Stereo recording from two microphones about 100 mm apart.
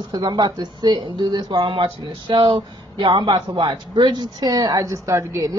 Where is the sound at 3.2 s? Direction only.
45° right (ahead or behind).